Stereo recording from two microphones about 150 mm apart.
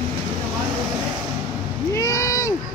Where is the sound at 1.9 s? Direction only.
20° left (ahead or behind).